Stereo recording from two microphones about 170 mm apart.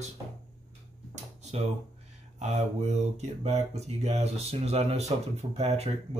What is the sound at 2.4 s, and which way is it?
Speech, 40° right (ahead or behind).